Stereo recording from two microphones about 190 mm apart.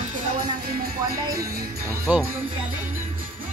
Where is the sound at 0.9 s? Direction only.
15° right (ahead or behind).